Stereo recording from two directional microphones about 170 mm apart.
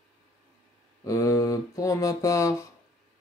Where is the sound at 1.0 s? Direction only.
15° left (ahead or behind).